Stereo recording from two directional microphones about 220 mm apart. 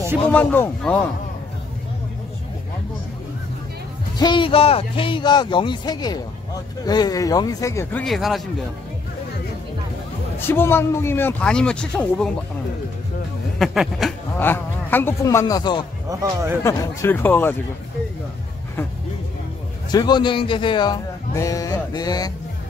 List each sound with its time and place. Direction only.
0.3 s speech: 5° left (ahead or behind)
4.2 s speech: 20° left (ahead or behind); by 8.4 s centre (ahead or behind)
10.4 s speech: 10° left (ahead or behind)
13.6 s a man's voice: centre (ahead or behind); by 15.8 s 20° left (ahead or behind)
16.1 s a man's voice: 15° right (ahead or behind)
16.6 s speech: 15° left (ahead or behind)
19.9 s speech: 20° left (ahead or behind)